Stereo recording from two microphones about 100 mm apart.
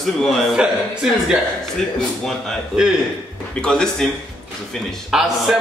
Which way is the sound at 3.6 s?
10° left (ahead or behind).